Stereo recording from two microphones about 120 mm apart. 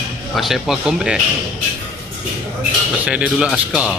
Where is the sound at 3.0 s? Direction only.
10° right (ahead or behind).